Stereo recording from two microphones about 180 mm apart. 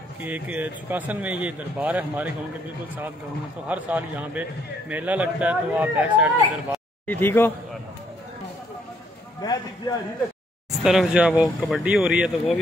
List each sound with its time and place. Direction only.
0.2 s a man's voice: 10° right (ahead or behind)
3.6 s a man's voice: 10° right (ahead or behind)
7.1 s speech: 10° left (ahead or behind)
9.4 s a man's voice: 20° left (ahead or behind)
10.8 s speech: 5° right (ahead or behind)